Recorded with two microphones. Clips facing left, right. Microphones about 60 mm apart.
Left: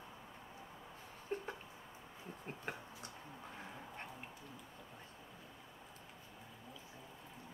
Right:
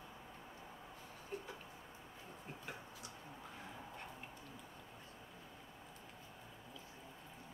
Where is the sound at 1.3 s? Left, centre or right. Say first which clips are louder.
Left 5 dB; left.